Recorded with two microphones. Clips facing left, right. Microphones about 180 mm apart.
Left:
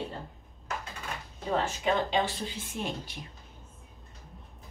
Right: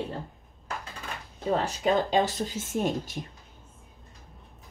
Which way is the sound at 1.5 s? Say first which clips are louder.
Right 3 dB; 40° right (ahead or behind).